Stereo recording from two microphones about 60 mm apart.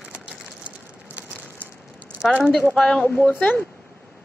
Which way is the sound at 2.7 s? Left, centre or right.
Centre.